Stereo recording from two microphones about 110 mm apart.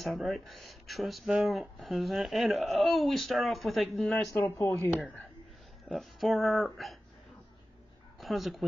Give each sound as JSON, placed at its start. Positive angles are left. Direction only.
{"t": 0.0, "sound": "speech", "side_deg": 0}
{"t": 4.3, "sound": "speech", "side_deg": 30}
{"t": 5.9, "sound": "speech", "side_deg": 0}
{"t": 8.2, "sound": "speech", "side_deg": 0}